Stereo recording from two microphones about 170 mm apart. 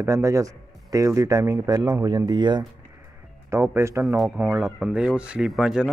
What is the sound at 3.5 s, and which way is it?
Speech, 15° right (ahead or behind).